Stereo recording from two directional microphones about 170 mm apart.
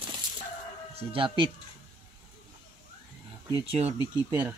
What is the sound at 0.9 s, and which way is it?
Speech, 30° right (ahead or behind).